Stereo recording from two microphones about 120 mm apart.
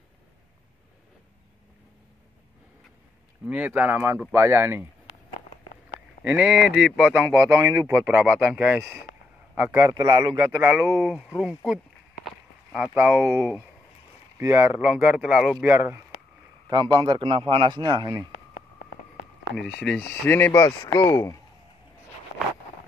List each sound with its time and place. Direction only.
3.4 s speech: 15° right (ahead or behind)
6.2 s speech: 10° right (ahead or behind)
7.5 s speech: 30° right (ahead or behind)
8.3 s speech: 10° right (ahead or behind)
9.8 s a man's voice: 30° right (ahead or behind)
10.6 s speech: 20° right (ahead or behind)
11.3 s speech: 5° right (ahead or behind)
14.4 s speech: 20° right (ahead or behind)
16.6 s a man's voice: 35° right (ahead or behind)
19.5 s speech: 5° left (ahead or behind); by 21.4 s 25° left (ahead or behind)